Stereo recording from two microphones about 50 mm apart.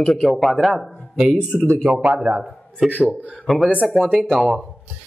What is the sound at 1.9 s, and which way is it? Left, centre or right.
Speech, right.